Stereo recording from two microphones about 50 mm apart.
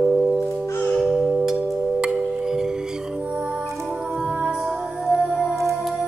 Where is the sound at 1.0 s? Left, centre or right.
Centre.